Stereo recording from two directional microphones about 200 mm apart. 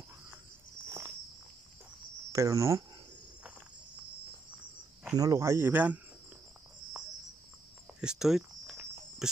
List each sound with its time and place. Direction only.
0.8 s walk: 15° right (ahead or behind)
2.3 s speech: 15° right (ahead or behind)
5.1 s speech: 15° right (ahead or behind)
8.0 s speech: 5° right (ahead or behind)